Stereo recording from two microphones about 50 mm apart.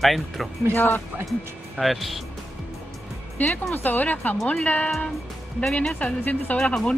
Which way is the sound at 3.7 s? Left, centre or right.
Left.